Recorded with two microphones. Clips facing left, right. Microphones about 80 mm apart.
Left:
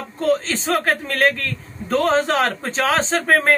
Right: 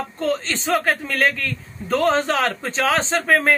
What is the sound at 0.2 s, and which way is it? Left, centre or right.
A man's voice, centre.